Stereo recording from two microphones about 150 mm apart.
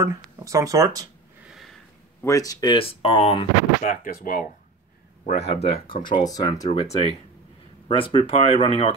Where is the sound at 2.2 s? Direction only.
20° left (ahead or behind); by 3.4 s 40° left (ahead or behind).